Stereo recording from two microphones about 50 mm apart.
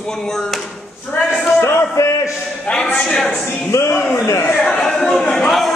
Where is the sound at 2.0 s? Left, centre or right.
Left.